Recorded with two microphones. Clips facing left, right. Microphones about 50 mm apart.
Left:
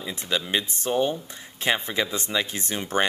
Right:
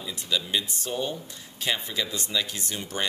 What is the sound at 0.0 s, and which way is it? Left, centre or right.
Speech, left.